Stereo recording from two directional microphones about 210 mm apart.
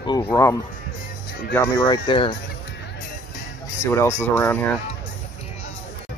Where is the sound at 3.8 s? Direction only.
15° left (ahead or behind).